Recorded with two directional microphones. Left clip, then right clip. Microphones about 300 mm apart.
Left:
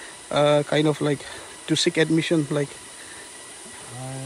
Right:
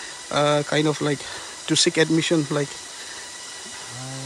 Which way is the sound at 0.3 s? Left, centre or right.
Centre.